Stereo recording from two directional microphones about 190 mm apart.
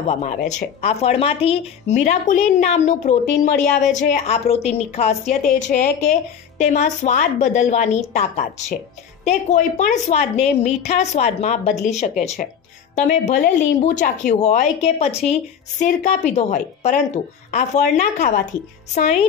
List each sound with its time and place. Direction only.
0.1 s a woman's voice: 35° left (ahead or behind)